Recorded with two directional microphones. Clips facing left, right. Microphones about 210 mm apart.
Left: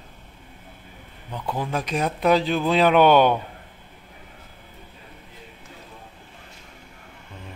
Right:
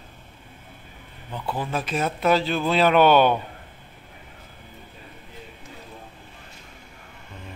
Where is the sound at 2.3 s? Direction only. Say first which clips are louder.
Left 2 dB; 15° left (ahead or behind).